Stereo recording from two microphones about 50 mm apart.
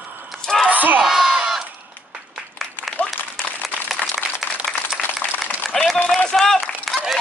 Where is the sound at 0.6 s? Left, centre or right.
Right.